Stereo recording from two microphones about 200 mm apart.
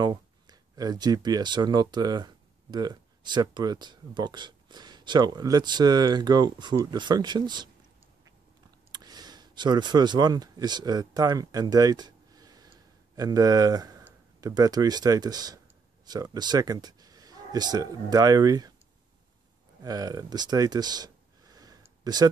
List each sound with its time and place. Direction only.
0.0 s speech: 20° right (ahead or behind)
8.9 s a man's voice: 20° right (ahead or behind)
19.8 s a sound: 20° right (ahead or behind)